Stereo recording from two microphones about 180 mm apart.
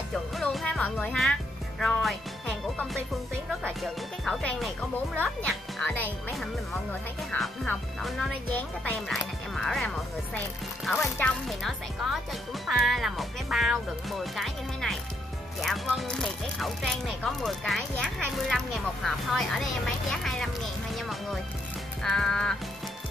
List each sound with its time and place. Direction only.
0.1 s speech: centre (ahead or behind)
1.8 s music: centre (ahead or behind)
3.6 s speech: centre (ahead or behind)